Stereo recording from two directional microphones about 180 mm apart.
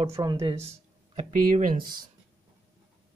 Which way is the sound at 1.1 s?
50° right (ahead or behind).